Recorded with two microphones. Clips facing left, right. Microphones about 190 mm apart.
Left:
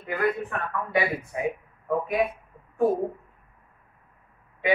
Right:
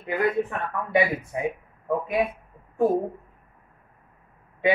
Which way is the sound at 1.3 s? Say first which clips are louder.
Right 1 dB; 25° right (ahead or behind).